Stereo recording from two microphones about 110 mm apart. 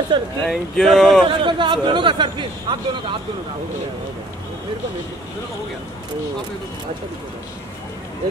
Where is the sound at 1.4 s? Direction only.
45° right (ahead or behind).